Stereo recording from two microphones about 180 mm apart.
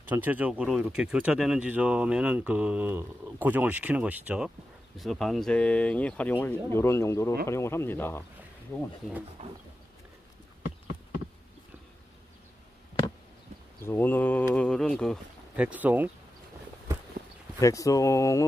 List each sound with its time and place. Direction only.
0.0 s speech: 10° right (ahead or behind); by 8.9 s 15° left (ahead or behind)
9.4 s roaring cats: 35° right (ahead or behind)
13.8 s speech: 10° left (ahead or behind)
15.5 s speech: 10° right (ahead or behind)
17.6 s speech: 20° left (ahead or behind)